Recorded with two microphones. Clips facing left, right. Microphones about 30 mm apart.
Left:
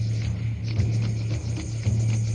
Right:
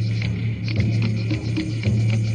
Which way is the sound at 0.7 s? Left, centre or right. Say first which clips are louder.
Right 6 dB; right.